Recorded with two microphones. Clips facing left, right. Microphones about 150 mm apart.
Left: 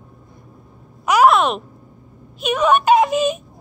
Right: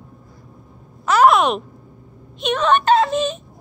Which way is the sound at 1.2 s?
Centre (ahead or behind).